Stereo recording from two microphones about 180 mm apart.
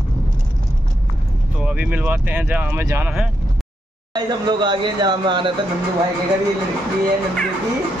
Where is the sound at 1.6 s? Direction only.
5° right (ahead or behind).